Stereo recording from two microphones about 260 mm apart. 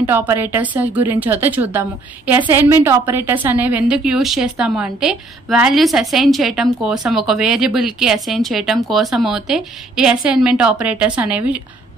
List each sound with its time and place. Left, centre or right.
0.0 s a woman's voice: centre